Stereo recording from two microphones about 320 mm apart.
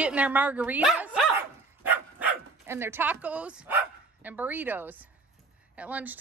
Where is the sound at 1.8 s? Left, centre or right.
Centre.